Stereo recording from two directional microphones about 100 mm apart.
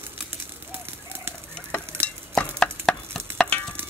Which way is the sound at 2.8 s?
5° left (ahead or behind).